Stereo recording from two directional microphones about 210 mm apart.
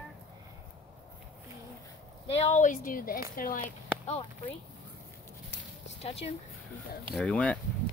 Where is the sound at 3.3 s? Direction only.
40° left (ahead or behind).